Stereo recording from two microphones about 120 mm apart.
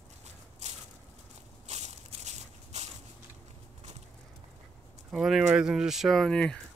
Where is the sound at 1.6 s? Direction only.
65° right (ahead or behind).